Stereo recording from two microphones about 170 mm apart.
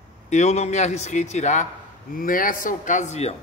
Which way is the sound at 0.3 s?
40° left (ahead or behind).